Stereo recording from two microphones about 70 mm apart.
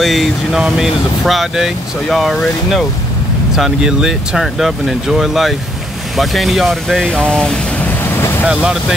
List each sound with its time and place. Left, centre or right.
0.0 s speech: centre
7.1 s speech: centre
7.8 s vehicle: left
8.5 s speech: centre